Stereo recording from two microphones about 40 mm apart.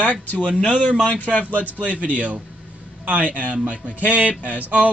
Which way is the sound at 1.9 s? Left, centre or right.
Right.